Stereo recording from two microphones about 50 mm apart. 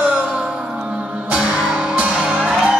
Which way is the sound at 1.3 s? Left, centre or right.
Right.